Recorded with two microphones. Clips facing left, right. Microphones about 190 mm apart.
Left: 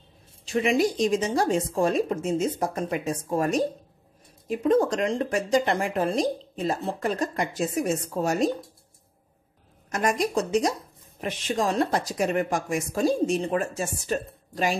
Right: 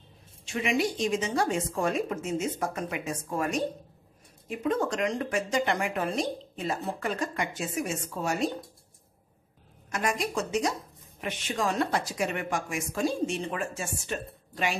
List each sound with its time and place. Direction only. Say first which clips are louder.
0.5 s speech: left 5 dB; 35° left (ahead or behind)
9.8 s speech: left 5 dB; 40° left (ahead or behind)